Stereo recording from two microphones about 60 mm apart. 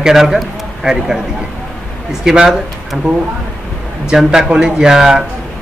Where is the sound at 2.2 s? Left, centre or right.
Centre.